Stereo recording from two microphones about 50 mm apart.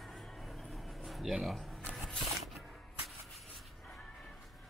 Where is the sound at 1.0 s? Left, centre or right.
Centre.